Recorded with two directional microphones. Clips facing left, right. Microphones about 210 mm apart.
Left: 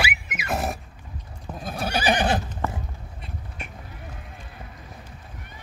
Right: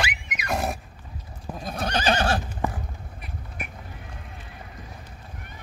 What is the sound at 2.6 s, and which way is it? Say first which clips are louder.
Basketball bounce: right 4 dB; 15° right (ahead or behind).